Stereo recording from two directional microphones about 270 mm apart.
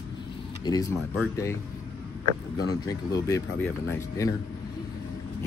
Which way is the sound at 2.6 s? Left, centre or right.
Centre.